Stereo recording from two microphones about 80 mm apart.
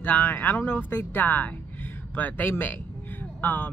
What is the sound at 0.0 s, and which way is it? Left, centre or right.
A woman's voice, left.